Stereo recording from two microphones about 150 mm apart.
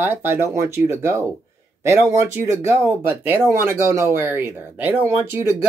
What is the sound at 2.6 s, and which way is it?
Speech, 15° right (ahead or behind).